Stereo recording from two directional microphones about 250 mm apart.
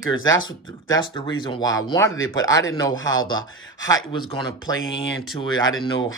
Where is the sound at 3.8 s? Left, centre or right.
Centre.